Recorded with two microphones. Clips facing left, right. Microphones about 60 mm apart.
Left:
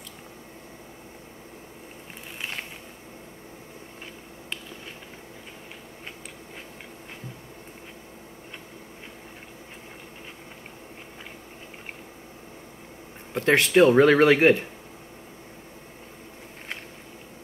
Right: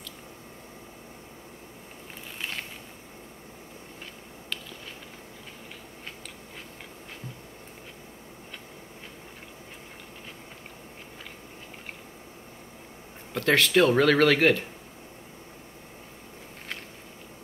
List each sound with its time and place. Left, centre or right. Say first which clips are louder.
13.3 s speech: left 2 dB; left